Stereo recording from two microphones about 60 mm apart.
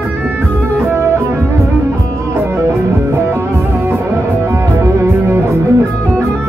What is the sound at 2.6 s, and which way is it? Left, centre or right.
Music, right.